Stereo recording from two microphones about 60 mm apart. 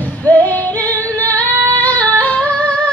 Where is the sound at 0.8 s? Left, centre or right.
Left.